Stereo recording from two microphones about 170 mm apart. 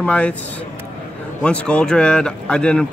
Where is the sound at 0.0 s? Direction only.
5° left (ahead or behind).